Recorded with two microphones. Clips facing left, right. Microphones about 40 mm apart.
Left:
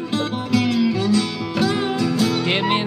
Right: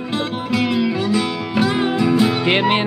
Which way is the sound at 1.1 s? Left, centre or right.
Right.